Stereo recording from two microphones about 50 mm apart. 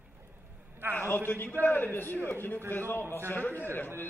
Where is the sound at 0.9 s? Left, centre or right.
Left.